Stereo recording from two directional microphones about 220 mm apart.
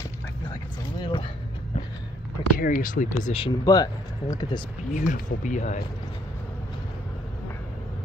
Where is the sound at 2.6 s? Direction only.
40° left (ahead or behind); by 4.6 s 20° left (ahead or behind).